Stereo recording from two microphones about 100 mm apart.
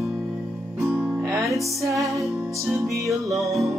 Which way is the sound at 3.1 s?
Centre (ahead or behind).